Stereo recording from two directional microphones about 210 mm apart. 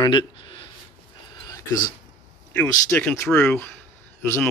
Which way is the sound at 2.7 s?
10° left (ahead or behind).